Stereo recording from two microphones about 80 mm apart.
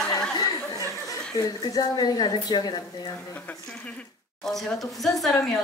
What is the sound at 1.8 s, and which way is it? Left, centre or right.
A woman's voice, left.